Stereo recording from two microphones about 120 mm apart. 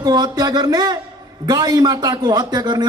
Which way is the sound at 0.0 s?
35° right (ahead or behind).